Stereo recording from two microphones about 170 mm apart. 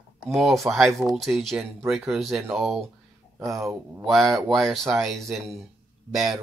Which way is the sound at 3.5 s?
20° right (ahead or behind).